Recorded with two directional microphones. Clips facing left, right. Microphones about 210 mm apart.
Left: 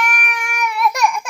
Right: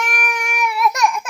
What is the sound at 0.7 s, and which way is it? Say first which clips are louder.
Baby cry: even; centre (ahead or behind).